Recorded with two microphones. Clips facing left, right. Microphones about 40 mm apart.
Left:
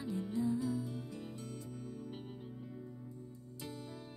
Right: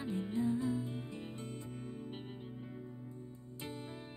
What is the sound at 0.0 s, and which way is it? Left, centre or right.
Music, right.